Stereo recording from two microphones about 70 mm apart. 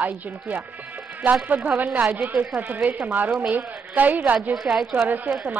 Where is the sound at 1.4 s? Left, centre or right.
Right.